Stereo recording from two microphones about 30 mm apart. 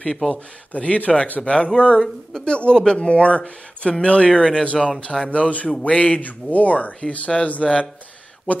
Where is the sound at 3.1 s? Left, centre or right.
Left.